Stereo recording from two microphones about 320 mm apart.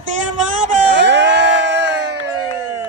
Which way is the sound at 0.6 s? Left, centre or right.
Right.